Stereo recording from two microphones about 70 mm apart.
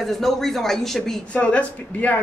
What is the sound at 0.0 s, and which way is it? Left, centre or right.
Speech, centre.